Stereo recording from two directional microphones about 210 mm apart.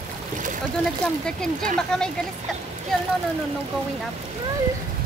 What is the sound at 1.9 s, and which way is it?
Speech, 5° left (ahead or behind).